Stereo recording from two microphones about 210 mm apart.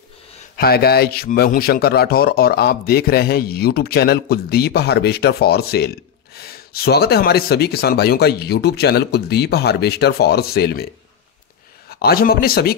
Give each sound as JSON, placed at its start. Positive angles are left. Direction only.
{"t": 0.6, "sound": "a man's voice", "side_deg": 50}
{"t": 11.9, "sound": "a man's voice", "side_deg": 45}